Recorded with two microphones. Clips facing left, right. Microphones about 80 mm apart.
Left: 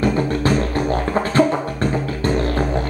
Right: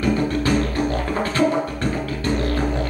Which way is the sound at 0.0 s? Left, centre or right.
Left.